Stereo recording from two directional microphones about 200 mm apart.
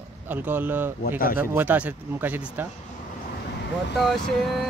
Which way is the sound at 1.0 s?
45° left (ahead or behind).